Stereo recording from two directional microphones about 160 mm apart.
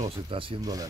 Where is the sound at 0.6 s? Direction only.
25° right (ahead or behind).